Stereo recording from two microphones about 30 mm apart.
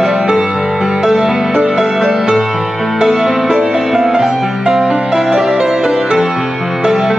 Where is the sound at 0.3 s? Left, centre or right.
Centre.